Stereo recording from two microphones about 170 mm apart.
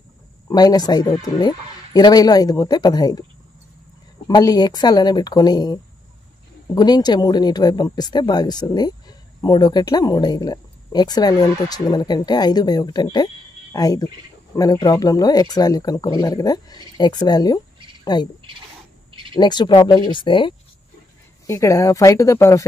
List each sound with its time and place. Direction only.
0.5 s speech: 25° left (ahead or behind)
4.3 s speech: 20° left (ahead or behind)
19.3 s speech: 25° left (ahead or behind)
21.5 s speech: 20° left (ahead or behind)